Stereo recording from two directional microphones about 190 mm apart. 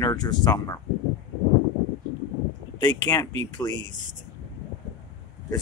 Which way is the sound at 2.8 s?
20° left (ahead or behind).